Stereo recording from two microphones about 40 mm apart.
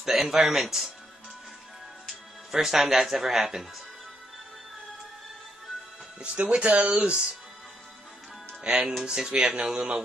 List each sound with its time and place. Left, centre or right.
0.0 s speech: centre
2.5 s speech: centre
6.2 s speech: right
8.6 s speech: centre